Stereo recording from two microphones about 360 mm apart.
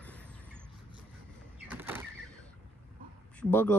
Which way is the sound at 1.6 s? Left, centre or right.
Centre.